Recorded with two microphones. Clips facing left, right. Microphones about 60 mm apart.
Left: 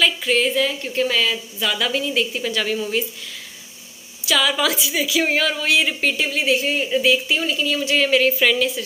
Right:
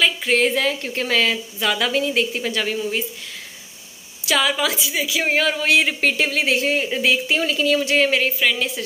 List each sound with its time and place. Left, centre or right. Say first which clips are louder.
0.2 s a woman's voice: right 1 dB; right
1.3 s a woman's voice: right 2 dB; right
2.5 s speech: left 1 dB; right
4.4 s speech: left 1 dB; right
5.7 s a woman's voice: right 2 dB; right
5.9 s speech: right 2 dB; right
7.4 s speech: right 2 dB; right
7.7 s speech: even; right
8.4 s a woman's voice: left 2 dB; centre